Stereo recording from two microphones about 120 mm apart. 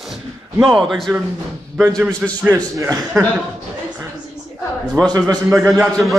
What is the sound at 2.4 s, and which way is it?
Speech, 25° right (ahead or behind).